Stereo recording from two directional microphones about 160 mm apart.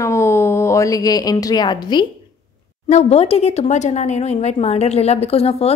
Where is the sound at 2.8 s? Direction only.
40° left (ahead or behind).